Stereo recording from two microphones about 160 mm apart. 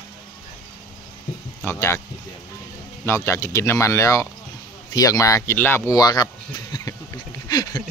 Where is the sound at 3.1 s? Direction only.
20° left (ahead or behind).